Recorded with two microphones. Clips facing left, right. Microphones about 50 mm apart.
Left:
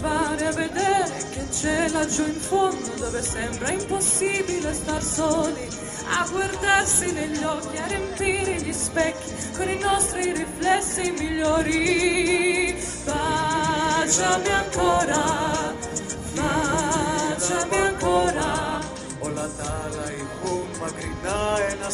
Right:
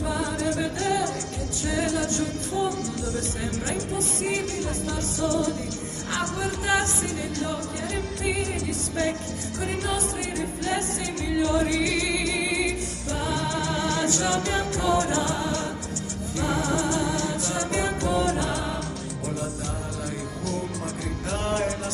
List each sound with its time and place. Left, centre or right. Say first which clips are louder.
0.0 s music: left 4 dB; left
21.3 s music: left 3 dB; left